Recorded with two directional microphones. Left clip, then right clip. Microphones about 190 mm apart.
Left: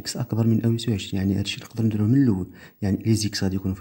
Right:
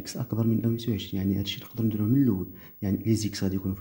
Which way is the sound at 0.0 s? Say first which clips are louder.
Left 4 dB; 25° left (ahead or behind).